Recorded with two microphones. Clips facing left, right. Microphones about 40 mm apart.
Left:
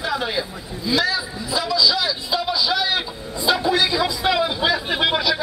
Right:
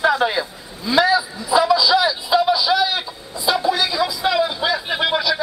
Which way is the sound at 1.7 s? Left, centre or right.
Centre.